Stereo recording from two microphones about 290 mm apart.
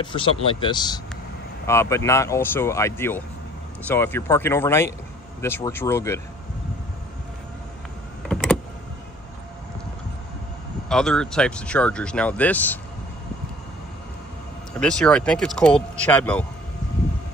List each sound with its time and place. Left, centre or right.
0.0 s speech: centre
8.3 s power windows: centre
10.9 s speech: centre
14.8 s speech: centre